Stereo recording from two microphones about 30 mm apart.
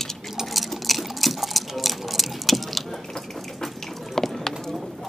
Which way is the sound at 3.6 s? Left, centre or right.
Centre.